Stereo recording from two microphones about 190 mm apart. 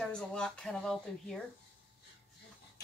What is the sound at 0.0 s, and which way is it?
Speech, 5° left (ahead or behind).